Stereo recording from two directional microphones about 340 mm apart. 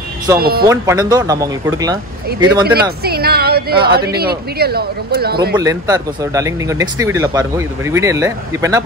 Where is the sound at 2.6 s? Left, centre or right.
Right.